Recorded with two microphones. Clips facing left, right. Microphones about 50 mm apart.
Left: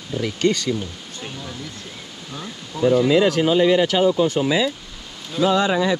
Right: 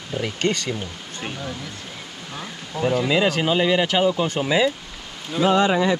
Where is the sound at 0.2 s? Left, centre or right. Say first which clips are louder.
Left 3 dB; right.